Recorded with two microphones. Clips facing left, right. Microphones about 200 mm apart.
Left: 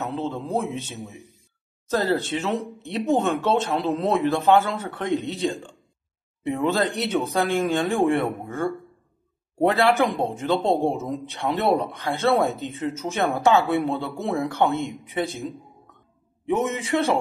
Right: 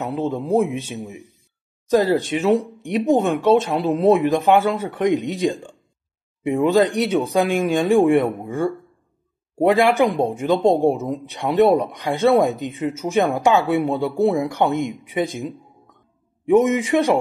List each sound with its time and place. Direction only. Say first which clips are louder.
0.0 s speech: right 5 dB; 15° right (ahead or behind)